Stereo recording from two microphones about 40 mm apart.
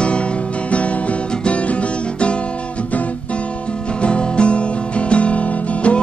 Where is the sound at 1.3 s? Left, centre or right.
Left.